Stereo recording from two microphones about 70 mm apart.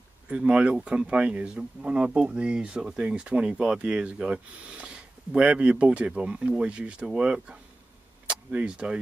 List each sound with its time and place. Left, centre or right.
0.3 s speech: centre